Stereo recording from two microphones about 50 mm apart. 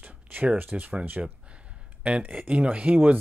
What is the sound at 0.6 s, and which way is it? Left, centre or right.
Speech, right.